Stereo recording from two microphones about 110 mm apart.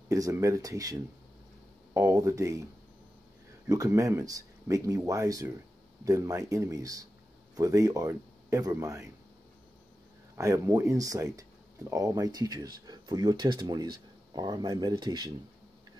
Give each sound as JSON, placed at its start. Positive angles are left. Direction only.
{"t": 0.1, "sound": "speech", "side_deg": -30}
{"t": 3.6, "sound": "speech", "side_deg": -30}
{"t": 10.3, "sound": "speech", "side_deg": -25}